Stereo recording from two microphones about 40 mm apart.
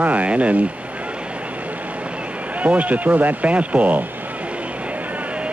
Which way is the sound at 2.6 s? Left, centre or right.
Right.